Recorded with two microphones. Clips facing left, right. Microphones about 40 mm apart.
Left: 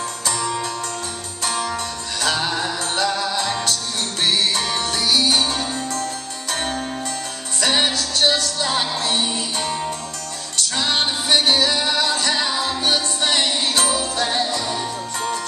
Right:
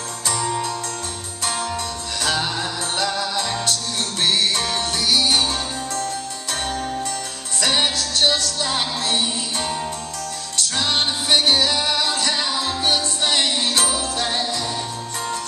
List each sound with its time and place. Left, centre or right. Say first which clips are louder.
2.2 s music: left 2 dB; centre
7.7 s music: left 1 dB; centre
10.8 s music: left 1 dB; centre